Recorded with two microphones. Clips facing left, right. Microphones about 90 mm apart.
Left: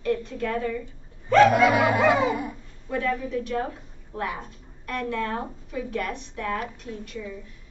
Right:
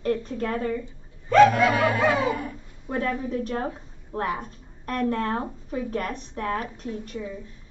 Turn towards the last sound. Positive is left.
turn(degrees=-35)  # may be behind; listen again after turning